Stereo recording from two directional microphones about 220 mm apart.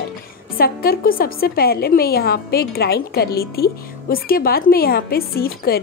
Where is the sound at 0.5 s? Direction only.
45° left (ahead or behind).